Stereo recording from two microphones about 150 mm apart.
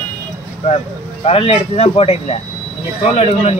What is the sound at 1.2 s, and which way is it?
Speech, 40° left (ahead or behind).